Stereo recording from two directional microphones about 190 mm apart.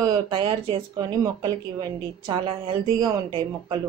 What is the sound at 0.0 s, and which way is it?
Speech, 25° right (ahead or behind).